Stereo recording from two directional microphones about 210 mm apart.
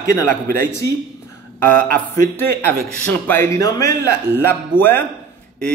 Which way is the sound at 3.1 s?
10° left (ahead or behind).